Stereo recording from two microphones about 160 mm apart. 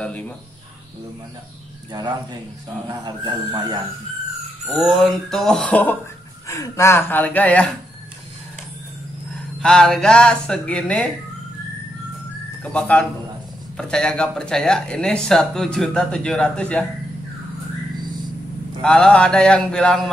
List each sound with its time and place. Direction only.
0.0 s speech: 10° left (ahead or behind)
1.9 s speech: 25° right (ahead or behind)
4.6 s speech: centre (ahead or behind)
9.6 s speech: 5° left (ahead or behind)
12.6 s speech: 10° left (ahead or behind)
18.8 s speech: 5° left (ahead or behind)